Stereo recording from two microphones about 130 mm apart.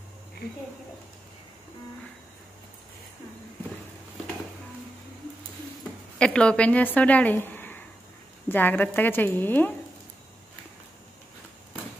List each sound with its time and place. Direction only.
6.1 s a woman's voice: 5° left (ahead or behind)